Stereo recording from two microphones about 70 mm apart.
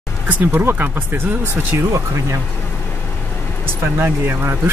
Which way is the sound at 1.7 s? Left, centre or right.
Right.